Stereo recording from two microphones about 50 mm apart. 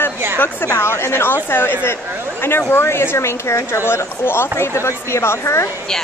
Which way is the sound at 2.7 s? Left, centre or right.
Left.